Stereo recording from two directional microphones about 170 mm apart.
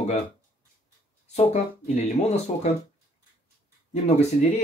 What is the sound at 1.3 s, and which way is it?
Speech, 40° left (ahead or behind).